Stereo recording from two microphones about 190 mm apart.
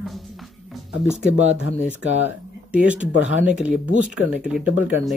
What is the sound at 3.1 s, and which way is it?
Speech, 80° left.